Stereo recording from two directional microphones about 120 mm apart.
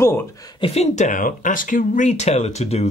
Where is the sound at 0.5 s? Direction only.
55° left (ahead or behind).